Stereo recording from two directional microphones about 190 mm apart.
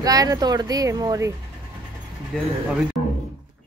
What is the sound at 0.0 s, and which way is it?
Speech, 20° right (ahead or behind).